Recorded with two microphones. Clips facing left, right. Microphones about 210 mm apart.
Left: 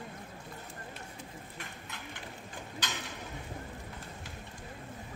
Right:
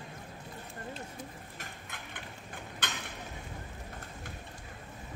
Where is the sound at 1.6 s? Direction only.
55° right (ahead or behind).